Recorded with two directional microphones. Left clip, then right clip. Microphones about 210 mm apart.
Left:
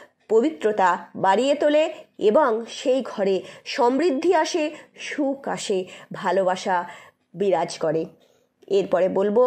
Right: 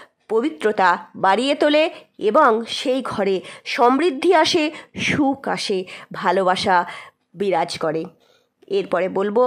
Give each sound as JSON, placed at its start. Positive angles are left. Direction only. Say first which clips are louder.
{"t": 0.3, "sound": "speech", "louder": "even", "side_deg": -15}
{"t": 2.5, "sound": "speech", "louder": "right 2 dB", "side_deg": -25}